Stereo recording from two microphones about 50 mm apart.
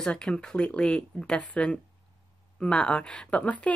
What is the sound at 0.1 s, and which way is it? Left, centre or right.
Speech, centre.